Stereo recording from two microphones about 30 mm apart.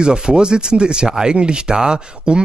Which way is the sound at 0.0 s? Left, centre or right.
Right.